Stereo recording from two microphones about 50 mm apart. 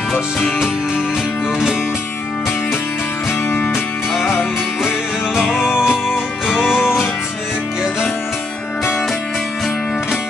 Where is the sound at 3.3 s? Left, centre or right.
Left.